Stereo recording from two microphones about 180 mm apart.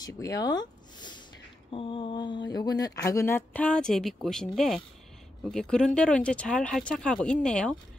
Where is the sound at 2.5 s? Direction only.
20° left (ahead or behind).